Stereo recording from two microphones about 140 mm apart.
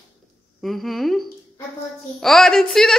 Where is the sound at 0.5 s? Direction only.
Centre (ahead or behind).